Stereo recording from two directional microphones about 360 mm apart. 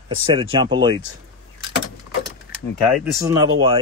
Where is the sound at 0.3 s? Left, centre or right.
Centre.